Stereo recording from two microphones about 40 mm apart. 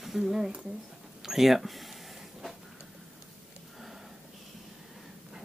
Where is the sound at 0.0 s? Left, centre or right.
Centre.